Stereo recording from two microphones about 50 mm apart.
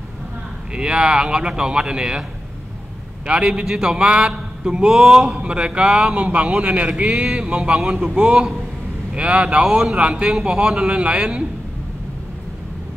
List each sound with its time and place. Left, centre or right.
0.7 s speech: centre
3.3 s a man's voice: right